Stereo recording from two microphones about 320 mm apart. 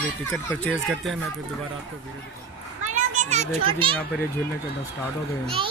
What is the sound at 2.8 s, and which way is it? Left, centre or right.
A child's voice, right.